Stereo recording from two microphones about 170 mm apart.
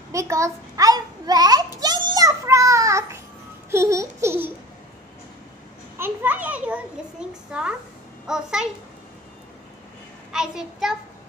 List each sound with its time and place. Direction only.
0.1 s a sound: 20° right (ahead or behind)
5.9 s children playing: 10° right (ahead or behind)
8.3 s a child's voice: 5° right (ahead or behind)
10.3 s a child's voice: 5° right (ahead or behind)